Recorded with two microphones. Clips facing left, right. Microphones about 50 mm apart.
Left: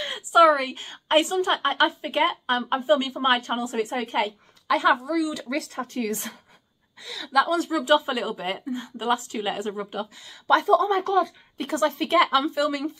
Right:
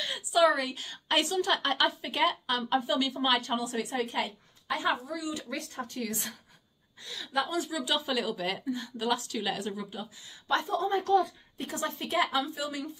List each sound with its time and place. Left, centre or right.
0.0 s a woman's voice: left
4.6 s a woman's voice: left
5.9 s speech: left
7.3 s speech: left
7.6 s a woman's voice: left
9.9 s speech: left